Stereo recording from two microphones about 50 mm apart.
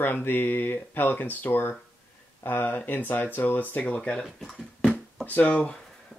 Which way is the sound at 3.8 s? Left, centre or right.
Centre.